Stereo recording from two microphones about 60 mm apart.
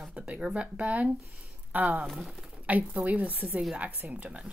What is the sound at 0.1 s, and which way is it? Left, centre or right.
Speech, centre.